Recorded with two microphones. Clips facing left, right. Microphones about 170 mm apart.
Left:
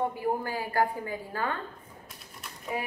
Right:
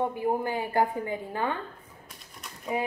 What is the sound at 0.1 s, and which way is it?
A woman's voice, 20° right (ahead or behind).